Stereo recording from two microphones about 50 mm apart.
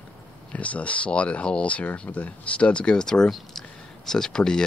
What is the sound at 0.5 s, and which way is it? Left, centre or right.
Speech, left.